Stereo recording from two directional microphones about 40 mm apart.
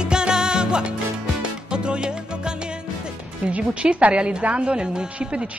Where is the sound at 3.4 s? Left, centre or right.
Right.